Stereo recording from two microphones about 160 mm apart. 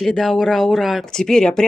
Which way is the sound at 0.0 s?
Centre (ahead or behind).